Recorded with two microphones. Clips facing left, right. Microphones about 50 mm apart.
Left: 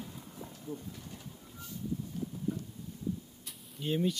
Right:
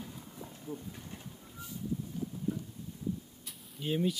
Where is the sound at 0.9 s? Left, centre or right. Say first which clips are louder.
Right 1 dB; right.